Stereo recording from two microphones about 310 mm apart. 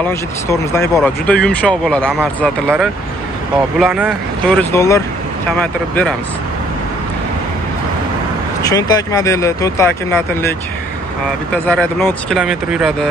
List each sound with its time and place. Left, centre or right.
0.0 s speech: centre
8.6 s speech: centre
11.5 s speech: centre